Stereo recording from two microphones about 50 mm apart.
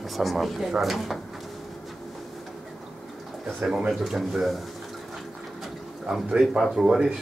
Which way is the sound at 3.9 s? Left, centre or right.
Centre.